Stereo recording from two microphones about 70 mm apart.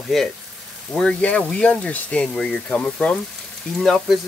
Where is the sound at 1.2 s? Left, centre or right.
Centre.